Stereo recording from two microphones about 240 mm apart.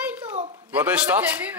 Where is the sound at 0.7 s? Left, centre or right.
Centre.